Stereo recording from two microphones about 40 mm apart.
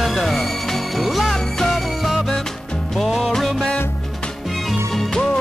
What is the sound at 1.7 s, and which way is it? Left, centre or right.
Music, centre.